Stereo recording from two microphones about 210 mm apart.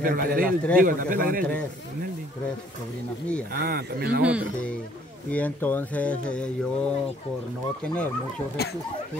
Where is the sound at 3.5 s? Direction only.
45° right (ahead or behind).